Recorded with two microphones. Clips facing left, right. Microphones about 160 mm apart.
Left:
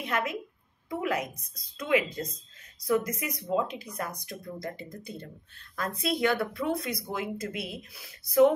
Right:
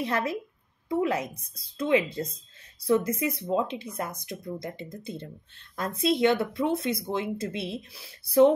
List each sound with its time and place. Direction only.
0.0 s speech: 30° right (ahead or behind)